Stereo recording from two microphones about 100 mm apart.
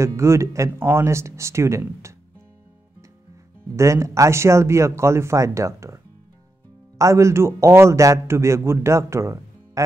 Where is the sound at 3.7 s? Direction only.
30° right (ahead or behind).